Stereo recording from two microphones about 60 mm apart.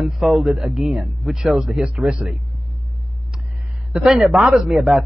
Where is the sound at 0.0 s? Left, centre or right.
Centre.